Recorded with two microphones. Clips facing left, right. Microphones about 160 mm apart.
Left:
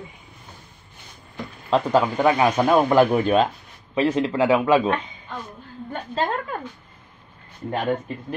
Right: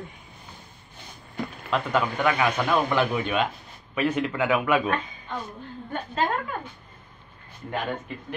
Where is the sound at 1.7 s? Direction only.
35° left (ahead or behind).